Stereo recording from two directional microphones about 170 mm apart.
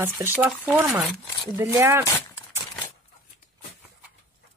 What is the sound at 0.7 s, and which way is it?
Speech, 10° right (ahead or behind).